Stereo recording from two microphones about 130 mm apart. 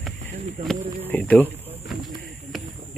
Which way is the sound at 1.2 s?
10° left (ahead or behind).